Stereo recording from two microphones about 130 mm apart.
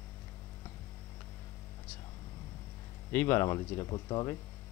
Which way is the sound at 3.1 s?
20° left (ahead or behind).